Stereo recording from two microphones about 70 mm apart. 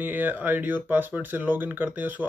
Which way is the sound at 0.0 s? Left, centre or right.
Right.